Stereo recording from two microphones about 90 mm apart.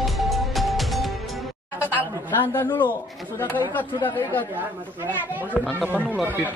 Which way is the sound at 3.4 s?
20° left (ahead or behind).